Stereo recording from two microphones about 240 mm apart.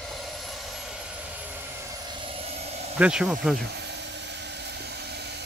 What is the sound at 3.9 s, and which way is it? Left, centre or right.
Vehicle, right.